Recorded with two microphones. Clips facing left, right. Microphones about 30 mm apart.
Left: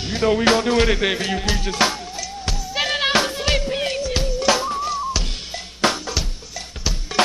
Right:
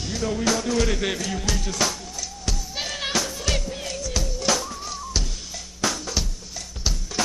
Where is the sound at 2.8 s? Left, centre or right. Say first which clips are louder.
Left 8 dB; left.